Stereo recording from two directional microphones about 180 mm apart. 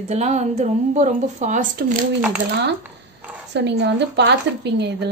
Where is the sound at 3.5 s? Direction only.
70° right (ahead or behind).